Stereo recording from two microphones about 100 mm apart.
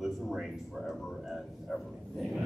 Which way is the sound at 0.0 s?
Centre (ahead or behind).